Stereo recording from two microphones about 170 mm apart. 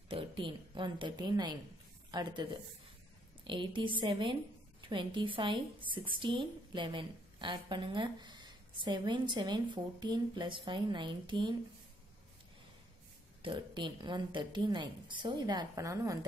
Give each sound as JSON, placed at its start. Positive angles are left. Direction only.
{"t": 0.1, "sound": "a woman's voice", "side_deg": -30}
{"t": 13.4, "sound": "a woman's voice", "side_deg": -30}